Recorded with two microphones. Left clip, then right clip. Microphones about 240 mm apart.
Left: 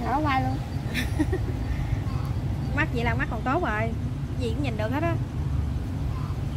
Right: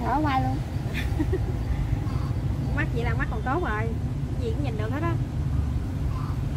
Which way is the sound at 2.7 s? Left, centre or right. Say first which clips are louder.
Left 4 dB; left.